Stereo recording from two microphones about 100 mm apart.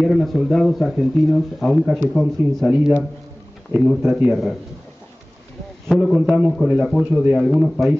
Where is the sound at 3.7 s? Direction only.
30° right (ahead or behind).